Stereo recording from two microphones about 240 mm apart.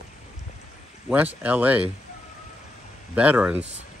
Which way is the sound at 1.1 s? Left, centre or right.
Centre.